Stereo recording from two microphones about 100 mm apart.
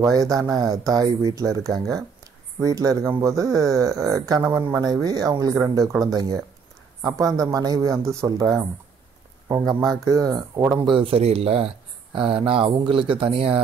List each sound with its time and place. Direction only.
0.0 s speech: 35° right (ahead or behind)
9.7 s speech: 40° right (ahead or behind)
10.9 s speech: 60° right (ahead or behind)